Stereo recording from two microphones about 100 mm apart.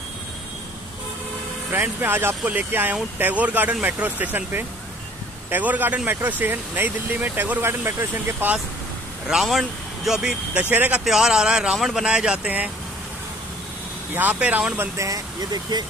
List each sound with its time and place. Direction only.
1.7 s speech: 20° right (ahead or behind)
9.3 s speech: centre (ahead or behind)
14.1 s speech: 15° right (ahead or behind)
14.8 s speech: 30° right (ahead or behind)